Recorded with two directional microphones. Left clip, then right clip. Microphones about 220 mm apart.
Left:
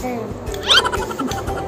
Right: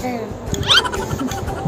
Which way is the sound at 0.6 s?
Centre (ahead or behind).